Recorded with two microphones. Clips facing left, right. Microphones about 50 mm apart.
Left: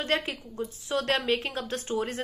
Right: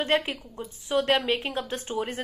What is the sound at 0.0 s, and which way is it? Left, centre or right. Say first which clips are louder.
Speech: right 3 dB; right.